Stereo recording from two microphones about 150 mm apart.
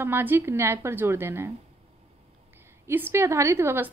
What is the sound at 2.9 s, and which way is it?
A woman's voice, 15° right (ahead or behind).